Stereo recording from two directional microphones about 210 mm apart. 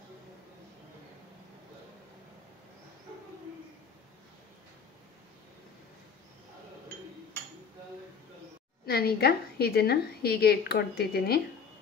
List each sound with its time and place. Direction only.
8.8 s a woman's voice: 50° left (ahead or behind)